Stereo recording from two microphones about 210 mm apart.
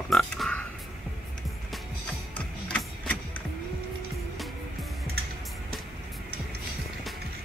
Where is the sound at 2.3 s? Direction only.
5° left (ahead or behind).